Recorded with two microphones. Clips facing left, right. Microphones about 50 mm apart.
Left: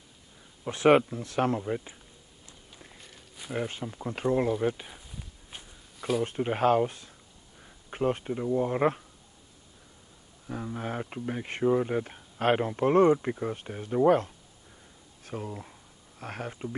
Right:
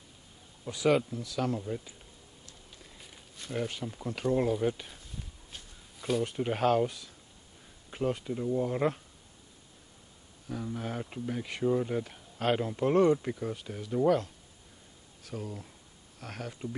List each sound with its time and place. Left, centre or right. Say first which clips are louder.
0.7 s speech: left 6 dB; left
3.5 s speech: left 2 dB; left
5.9 s a sound: left 2 dB; centre
6.2 s speech: left 4 dB; left
10.4 s speech: left 2 dB; left